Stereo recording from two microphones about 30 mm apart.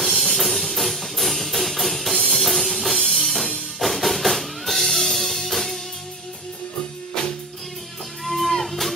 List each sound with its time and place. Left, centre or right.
0.0 s music: centre
7.2 s music: left
8.3 s music: centre